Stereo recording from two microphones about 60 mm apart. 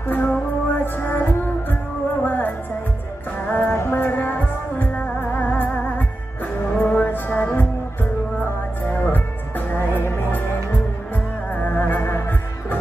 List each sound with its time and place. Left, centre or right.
0.0 s music: left
3.7 s music: left